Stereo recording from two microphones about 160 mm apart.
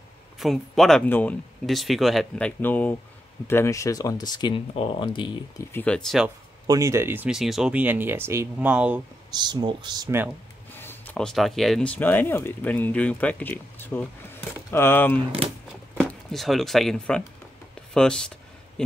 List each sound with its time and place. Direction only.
0.4 s speech: centre (ahead or behind)
1.7 s speech: centre (ahead or behind); by 5.7 s 30° left (ahead or behind)
5.7 s speech: 10° left (ahead or behind)
6.7 s speech: 20° right (ahead or behind)
9.3 s speech: 25° right (ahead or behind)
10.0 s speech: 15° right (ahead or behind)
10.7 s speech: 15° left (ahead or behind)
15.1 s speech: 35° right (ahead or behind)
16.0 s speech: 5° left (ahead or behind)
17.9 s a sound: 5° left (ahead or behind)